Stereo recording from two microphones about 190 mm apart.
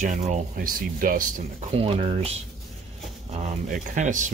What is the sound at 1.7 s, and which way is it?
Speech, 30° right (ahead or behind).